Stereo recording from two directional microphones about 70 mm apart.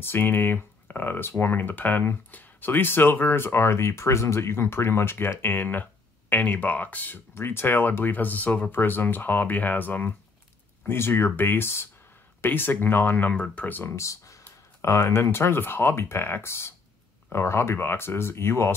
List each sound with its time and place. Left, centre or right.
0.0 s speech: left
13.9 s speech: left